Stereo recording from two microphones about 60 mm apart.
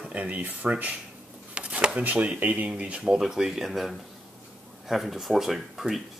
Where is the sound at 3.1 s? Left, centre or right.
Centre.